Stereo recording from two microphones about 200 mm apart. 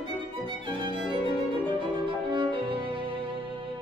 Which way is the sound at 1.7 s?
25° right (ahead or behind).